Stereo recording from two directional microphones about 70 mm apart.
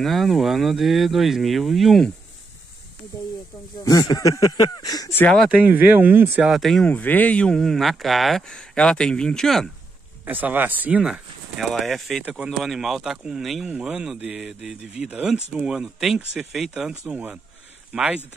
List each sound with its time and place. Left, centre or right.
0.0 s speech: centre
3.8 s speech: left
4.5 s a sound: left
5.5 s speech: right
6.5 s speech: centre
6.9 s speech: left
7.5 s speech: centre
10.2 s speech: right
11.0 s speech: centre
17.1 s speech: centre